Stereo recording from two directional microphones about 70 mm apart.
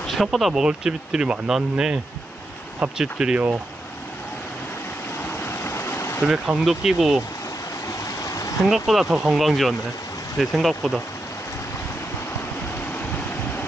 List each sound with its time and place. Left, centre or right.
0.0 s speech: centre
3.0 s speech: centre
5.4 s vehicle: left
6.2 s speech: centre
8.0 s stream: left
8.6 s speech: centre